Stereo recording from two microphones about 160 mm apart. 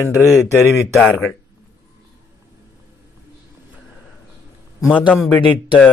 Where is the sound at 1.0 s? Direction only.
10° left (ahead or behind).